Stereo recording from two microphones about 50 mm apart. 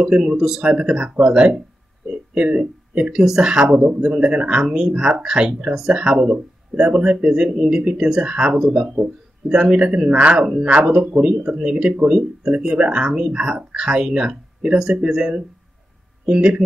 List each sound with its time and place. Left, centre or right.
0.0 s speech: centre
3.3 s speech: centre